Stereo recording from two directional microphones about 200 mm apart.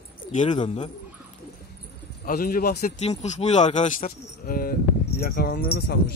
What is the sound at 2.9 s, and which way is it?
Speech, 35° left (ahead or behind).